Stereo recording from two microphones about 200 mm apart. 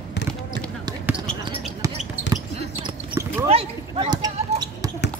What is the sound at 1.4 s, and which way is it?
Basketball bounce, 25° right (ahead or behind).